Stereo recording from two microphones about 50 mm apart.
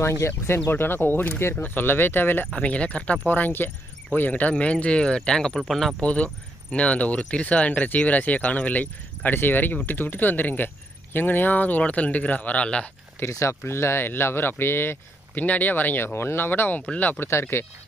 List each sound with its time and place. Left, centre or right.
0.0 s speech: left
2.5 s speech: left
3.3 s speech: left; by 5.6 s centre
5.6 s speech: centre
5.9 s speech: left
13.3 s speech: left
15.4 s speech: left
16.1 s speech: left
16.8 s speech: left
17.3 s speech: left